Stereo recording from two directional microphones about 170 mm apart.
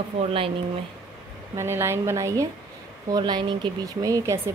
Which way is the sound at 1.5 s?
15° right (ahead or behind).